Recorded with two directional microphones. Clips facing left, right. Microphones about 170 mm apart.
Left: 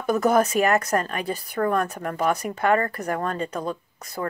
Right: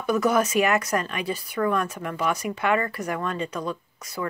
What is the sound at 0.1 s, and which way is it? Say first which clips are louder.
Speech: left 2 dB; 45° left (ahead or behind).